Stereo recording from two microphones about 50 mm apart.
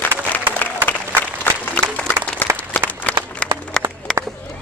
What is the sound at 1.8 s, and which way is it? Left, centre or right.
Applause, left.